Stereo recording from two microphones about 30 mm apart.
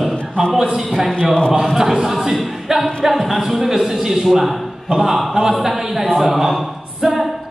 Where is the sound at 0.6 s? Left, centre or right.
Right.